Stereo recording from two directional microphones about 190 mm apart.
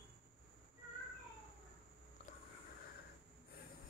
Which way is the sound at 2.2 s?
35° left (ahead or behind).